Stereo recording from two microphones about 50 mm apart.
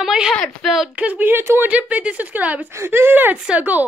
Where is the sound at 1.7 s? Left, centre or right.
Right.